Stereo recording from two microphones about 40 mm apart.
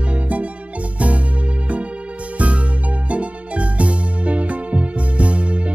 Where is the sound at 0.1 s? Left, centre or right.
Right.